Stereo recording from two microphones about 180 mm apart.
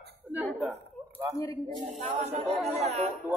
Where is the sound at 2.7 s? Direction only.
35° right (ahead or behind).